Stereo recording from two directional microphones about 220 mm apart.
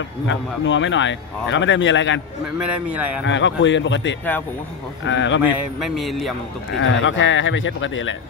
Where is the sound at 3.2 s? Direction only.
55° left (ahead or behind).